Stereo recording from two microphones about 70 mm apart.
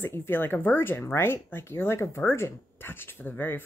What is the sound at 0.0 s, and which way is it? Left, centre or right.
Speech, left.